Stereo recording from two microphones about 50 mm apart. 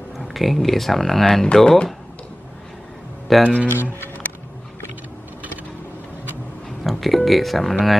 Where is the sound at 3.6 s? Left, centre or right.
Left.